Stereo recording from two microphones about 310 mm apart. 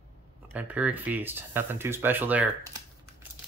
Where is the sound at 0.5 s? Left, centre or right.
Centre.